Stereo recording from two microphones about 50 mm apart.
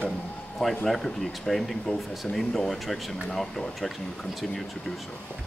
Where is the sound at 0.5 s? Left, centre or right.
Centre.